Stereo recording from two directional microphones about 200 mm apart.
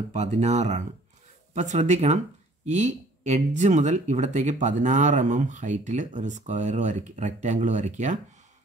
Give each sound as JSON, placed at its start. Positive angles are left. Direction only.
{"t": 0.1, "sound": "speech", "side_deg": -35}